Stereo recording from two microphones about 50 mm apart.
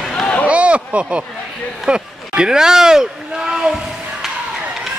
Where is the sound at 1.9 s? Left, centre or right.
Centre.